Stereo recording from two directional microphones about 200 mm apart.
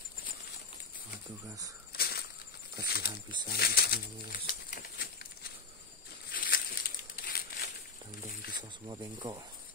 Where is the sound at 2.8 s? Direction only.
50° left (ahead or behind).